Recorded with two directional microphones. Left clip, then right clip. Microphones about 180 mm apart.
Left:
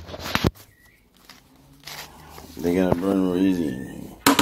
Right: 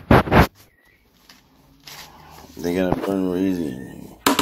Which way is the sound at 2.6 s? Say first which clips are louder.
Even; centre (ahead or behind).